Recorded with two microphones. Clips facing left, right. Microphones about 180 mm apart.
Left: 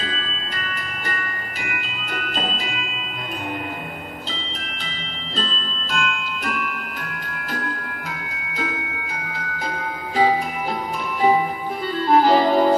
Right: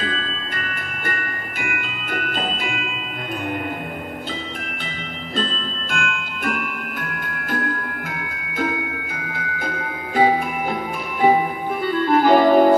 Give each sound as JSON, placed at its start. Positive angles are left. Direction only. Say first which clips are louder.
{"t": 0.0, "sound": "music", "louder": "right 3 dB", "side_deg": -50}
{"t": 5.4, "sound": "glockenspiel", "louder": "right 2 dB", "side_deg": -50}
{"t": 8.5, "sound": "music", "louder": "right 5 dB", "side_deg": -50}
{"t": 11.9, "sound": "clarinet", "louder": "right 1 dB", "side_deg": -55}